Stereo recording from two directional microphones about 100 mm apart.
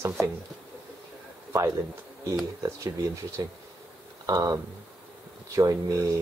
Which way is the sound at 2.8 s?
30° right (ahead or behind).